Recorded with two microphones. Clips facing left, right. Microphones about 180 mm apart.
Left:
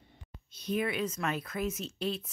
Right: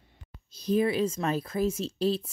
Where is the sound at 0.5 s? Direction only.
35° right (ahead or behind).